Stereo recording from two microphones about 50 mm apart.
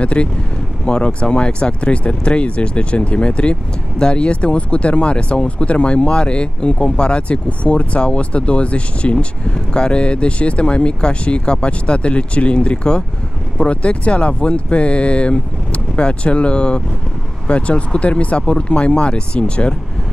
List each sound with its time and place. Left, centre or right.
0.0 s speech: left